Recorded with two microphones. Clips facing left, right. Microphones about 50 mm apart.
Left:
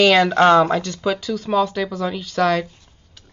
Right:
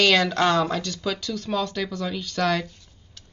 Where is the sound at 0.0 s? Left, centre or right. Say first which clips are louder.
Left 5 dB; centre.